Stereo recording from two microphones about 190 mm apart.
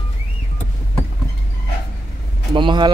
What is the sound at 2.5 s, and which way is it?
Speech, 25° right (ahead or behind).